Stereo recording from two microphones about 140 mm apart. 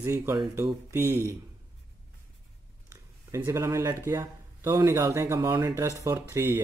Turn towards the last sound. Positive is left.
turn(degrees=-15)  # may be behind; listen again after turning